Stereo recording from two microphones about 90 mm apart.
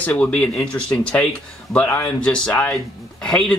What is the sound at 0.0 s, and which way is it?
Speech, 15° left (ahead or behind).